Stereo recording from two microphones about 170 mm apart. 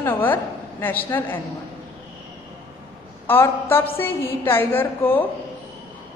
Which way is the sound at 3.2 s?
15° left (ahead or behind).